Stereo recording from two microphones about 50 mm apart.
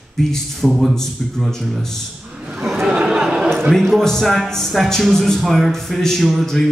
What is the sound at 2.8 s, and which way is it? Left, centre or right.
Chatter, centre.